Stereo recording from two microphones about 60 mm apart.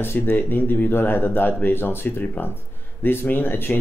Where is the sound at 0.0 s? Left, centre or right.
Left.